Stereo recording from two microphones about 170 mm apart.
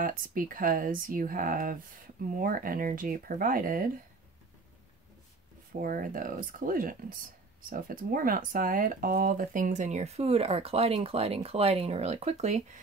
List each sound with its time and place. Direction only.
0.0 s speech: 55° right (ahead or behind)
5.7 s speech: 55° right (ahead or behind)